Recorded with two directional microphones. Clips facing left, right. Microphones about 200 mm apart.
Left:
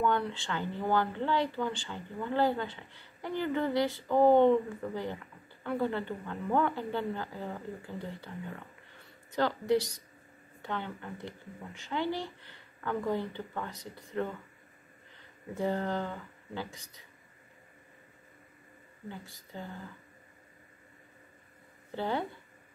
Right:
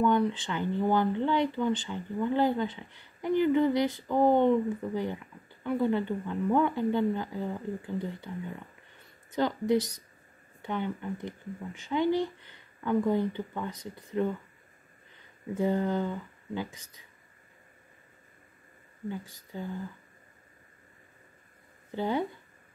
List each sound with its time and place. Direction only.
0.0 s speech: 15° right (ahead or behind)
9.3 s speech: 15° right (ahead or behind)
15.5 s speech: 15° right (ahead or behind)
19.0 s speech: 15° right (ahead or behind)
21.9 s speech: 15° right (ahead or behind)